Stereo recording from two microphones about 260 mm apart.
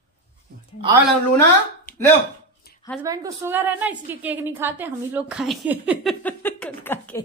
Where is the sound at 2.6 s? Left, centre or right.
Left.